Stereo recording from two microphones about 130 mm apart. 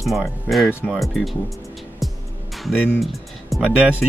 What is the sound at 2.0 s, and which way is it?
Music, centre (ahead or behind).